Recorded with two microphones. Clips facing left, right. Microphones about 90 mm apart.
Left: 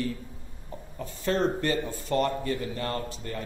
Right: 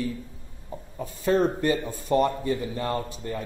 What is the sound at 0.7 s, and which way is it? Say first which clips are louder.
Speech: right 3 dB; 15° right (ahead or behind).